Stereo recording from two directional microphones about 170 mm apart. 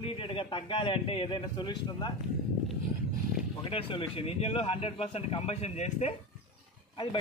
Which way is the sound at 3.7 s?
30° left (ahead or behind).